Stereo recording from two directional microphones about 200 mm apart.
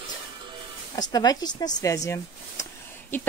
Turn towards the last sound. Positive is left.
turn(degrees=15)  # may be behind; listen again after turning